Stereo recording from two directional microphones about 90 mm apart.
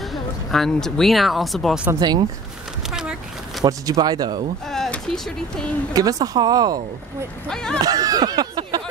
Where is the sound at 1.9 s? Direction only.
50° right (ahead or behind).